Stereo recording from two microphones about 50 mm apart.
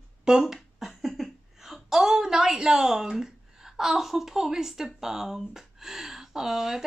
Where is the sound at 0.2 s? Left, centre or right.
Centre.